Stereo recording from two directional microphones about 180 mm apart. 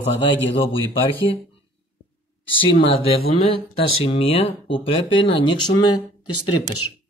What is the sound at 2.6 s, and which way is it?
Speech, 30° left (ahead or behind).